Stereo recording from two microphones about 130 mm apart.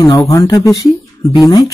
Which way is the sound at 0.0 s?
25° left (ahead or behind).